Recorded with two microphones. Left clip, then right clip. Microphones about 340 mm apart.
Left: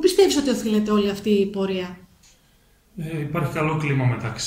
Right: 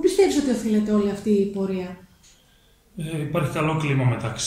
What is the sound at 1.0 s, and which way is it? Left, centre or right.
Speech, left.